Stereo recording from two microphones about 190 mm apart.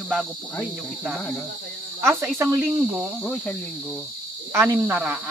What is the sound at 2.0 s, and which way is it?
Speech, 15° right (ahead or behind).